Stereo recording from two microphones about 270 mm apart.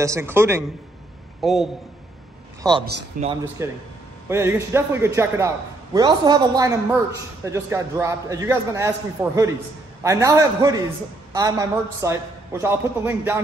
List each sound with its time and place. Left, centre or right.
0.0 s a man's voice: centre
2.6 s a man's voice: centre
3.1 s speech: right
3.6 s a man's voice: centre